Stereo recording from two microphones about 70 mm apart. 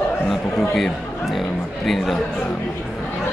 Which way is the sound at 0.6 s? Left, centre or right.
Centre.